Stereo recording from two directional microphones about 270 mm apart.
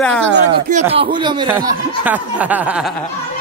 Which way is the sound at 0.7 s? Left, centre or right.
Right.